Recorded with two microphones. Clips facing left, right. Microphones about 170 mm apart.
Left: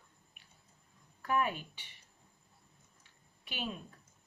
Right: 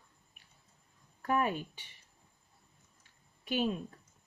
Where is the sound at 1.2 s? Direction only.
40° right (ahead or behind).